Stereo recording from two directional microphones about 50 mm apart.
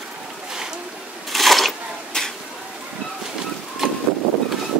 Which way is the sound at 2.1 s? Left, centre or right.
Centre.